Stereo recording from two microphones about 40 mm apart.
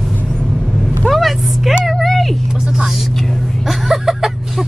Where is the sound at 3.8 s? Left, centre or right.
Centre.